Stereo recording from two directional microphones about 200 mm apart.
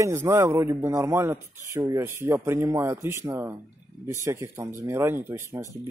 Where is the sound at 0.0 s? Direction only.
15° right (ahead or behind).